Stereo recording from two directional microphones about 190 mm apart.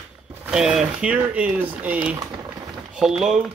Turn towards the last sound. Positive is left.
turn(degrees=0)  # may be behind; listen again after turning